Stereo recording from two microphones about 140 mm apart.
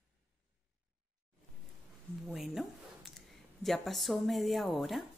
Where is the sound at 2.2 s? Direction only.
Centre (ahead or behind).